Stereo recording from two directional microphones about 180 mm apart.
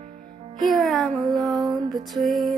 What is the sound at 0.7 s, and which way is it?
Music, centre (ahead or behind).